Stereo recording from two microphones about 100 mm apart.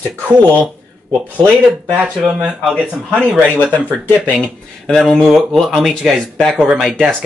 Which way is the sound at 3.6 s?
15° left (ahead or behind).